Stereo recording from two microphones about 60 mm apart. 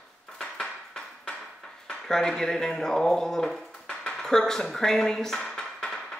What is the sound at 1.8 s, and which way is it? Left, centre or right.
Speech, centre.